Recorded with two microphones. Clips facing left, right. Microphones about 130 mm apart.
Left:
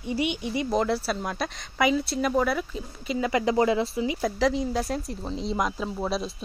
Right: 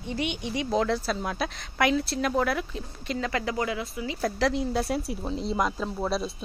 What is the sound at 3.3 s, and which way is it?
Speech, 20° left (ahead or behind).